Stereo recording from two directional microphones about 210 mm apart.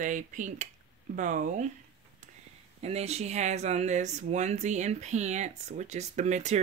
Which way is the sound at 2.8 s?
30° right (ahead or behind).